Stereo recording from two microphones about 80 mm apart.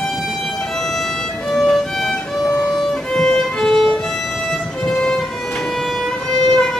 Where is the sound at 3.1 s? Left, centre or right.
Centre.